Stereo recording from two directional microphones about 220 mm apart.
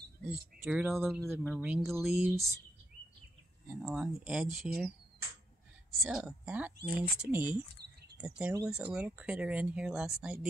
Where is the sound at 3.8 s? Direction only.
5° right (ahead or behind).